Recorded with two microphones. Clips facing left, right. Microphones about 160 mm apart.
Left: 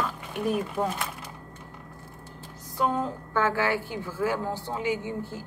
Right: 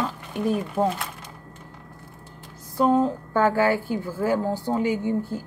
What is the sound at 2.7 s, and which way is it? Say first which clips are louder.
A woman's voice: right 7 dB; 35° right (ahead or behind).